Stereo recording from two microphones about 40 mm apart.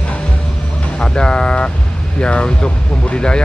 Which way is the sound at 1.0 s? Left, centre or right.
Left.